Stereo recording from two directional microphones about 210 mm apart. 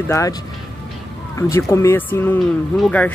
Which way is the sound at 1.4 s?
15° left (ahead or behind).